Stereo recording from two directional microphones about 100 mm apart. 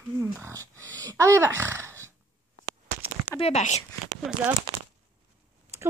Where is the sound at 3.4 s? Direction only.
90° left.